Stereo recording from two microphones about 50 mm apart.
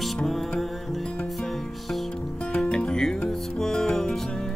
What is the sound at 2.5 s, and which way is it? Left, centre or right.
Music, left.